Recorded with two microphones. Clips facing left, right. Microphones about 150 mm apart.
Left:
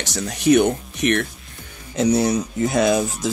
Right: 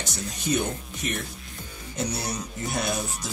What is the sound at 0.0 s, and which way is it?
Speech, 85° left.